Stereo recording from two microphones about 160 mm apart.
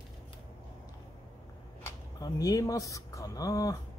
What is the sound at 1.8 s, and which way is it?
Speech, 25° left (ahead or behind).